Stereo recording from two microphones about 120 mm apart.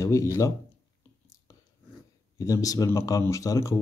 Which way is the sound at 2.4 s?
30° left (ahead or behind).